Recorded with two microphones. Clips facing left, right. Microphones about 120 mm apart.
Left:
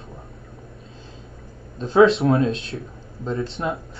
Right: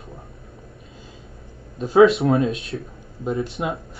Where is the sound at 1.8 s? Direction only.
5° right (ahead or behind).